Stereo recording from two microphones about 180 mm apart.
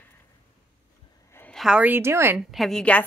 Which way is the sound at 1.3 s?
10° left (ahead or behind).